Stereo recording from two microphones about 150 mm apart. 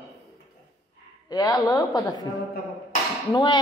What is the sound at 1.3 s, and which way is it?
Speech, 25° left (ahead or behind).